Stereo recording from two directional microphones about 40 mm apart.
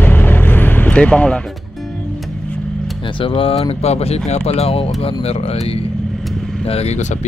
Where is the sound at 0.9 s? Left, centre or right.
Left.